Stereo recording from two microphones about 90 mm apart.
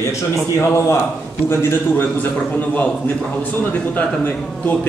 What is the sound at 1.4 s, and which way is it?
A man's voice, 25° left (ahead or behind).